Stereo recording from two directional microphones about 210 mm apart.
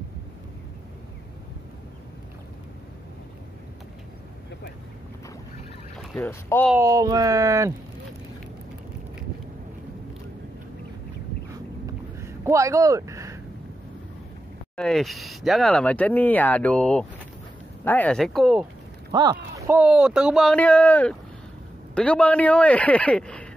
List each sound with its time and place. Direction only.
6.1 s speech: 10° left (ahead or behind)
6.7 s speech: 15° right (ahead or behind)
11.8 s a sound: 15° right (ahead or behind)
14.8 s speech: centre (ahead or behind)
19.1 s speech: 20° right (ahead or behind)
19.7 s speech: 5° right (ahead or behind)